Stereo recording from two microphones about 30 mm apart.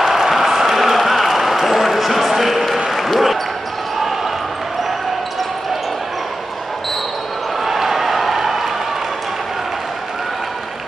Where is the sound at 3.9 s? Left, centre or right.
Centre.